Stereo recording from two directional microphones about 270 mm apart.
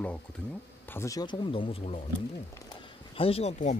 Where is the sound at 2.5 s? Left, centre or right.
Centre.